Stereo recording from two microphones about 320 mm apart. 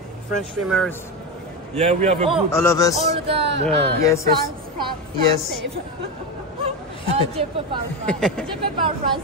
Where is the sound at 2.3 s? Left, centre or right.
Centre.